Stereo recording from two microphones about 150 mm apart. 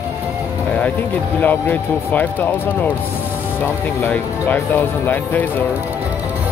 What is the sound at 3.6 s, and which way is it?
Speech, 15° left (ahead or behind).